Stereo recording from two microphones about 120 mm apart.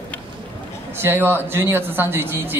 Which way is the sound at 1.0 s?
20° right (ahead or behind).